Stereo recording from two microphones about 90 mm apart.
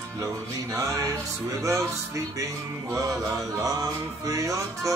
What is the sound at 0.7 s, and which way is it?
Music, 40° right (ahead or behind).